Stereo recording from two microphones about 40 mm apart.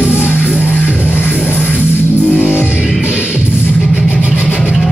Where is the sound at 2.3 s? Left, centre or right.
Left.